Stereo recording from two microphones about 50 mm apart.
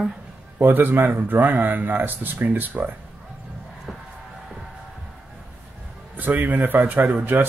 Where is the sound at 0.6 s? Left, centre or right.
Right.